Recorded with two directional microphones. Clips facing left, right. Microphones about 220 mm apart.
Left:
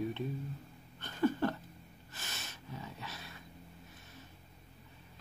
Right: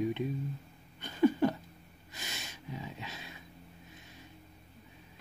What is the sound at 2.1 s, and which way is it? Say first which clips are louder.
Snort: right 3 dB; 15° right (ahead or behind).